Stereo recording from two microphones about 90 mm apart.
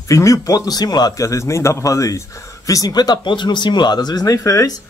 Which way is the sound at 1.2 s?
35° left (ahead or behind).